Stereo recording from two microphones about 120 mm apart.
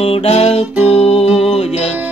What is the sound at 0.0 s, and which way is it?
Music, 55° left (ahead or behind).